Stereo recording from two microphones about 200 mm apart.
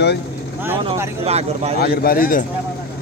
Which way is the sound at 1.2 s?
30° right (ahead or behind).